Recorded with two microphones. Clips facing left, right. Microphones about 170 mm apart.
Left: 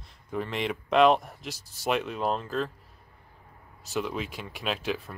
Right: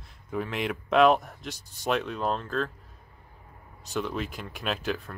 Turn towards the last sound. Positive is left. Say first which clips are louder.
# even
turn(degrees=0)  # may be behind; listen again after turning